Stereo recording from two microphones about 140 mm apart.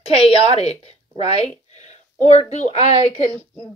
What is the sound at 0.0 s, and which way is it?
A woman's voice, 45° left (ahead or behind).